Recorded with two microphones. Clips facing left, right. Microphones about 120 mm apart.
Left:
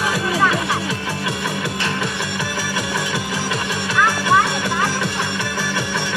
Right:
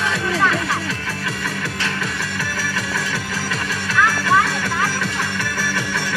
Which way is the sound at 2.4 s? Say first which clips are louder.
Left 1 dB; 5° left (ahead or behind).